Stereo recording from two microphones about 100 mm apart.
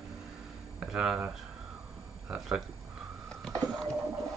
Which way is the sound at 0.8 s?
5° right (ahead or behind).